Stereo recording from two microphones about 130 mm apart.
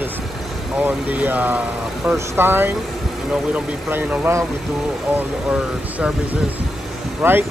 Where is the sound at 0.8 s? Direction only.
15° right (ahead or behind).